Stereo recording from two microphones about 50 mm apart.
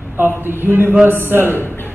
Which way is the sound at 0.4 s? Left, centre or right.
Right.